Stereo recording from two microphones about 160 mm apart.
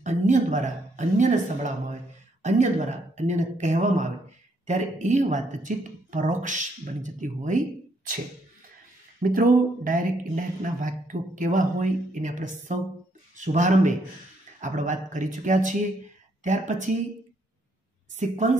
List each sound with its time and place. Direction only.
0.0 s speech: 50° right (ahead or behind)
9.2 s speech: 60° right (ahead or behind)
18.1 s speech: 50° right (ahead or behind)